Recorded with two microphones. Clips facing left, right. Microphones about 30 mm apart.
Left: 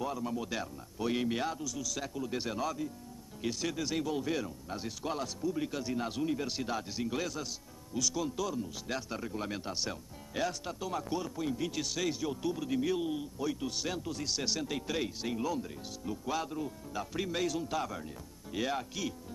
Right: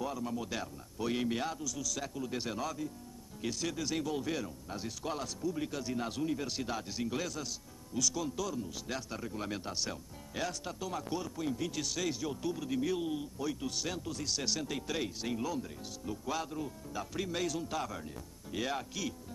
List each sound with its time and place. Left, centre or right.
0.0 s speech: centre